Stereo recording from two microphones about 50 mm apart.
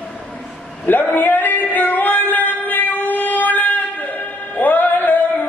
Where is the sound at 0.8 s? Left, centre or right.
Left.